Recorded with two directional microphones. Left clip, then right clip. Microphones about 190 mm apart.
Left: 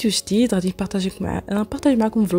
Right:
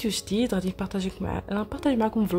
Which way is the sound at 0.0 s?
35° left (ahead or behind).